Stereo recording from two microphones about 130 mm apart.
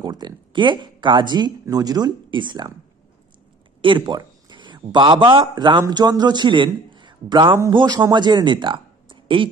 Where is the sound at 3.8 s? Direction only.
40° right (ahead or behind).